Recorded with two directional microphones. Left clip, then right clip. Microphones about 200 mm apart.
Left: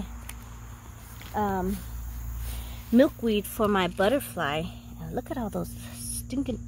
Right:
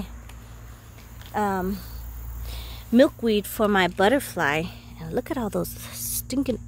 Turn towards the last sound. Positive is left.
turn(degrees=-15)  # may be behind; listen again after turning